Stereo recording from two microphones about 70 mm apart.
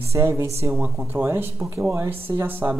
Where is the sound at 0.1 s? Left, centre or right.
Right.